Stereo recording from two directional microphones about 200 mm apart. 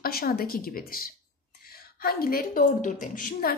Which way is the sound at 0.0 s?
50° left (ahead or behind).